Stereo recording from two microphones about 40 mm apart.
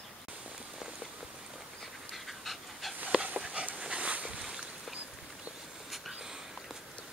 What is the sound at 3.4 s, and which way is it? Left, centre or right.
Dog, right.